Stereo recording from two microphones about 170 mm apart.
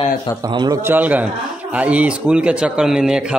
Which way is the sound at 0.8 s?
10° right (ahead or behind).